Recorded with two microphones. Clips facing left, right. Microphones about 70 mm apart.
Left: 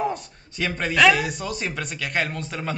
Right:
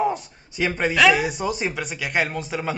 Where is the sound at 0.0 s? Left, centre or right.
Centre.